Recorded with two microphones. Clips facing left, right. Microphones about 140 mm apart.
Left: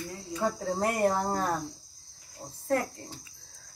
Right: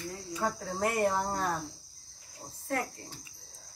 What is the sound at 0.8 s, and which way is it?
Speech, 35° left (ahead or behind).